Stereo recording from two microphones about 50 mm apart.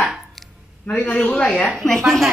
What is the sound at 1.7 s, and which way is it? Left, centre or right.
Speech, centre.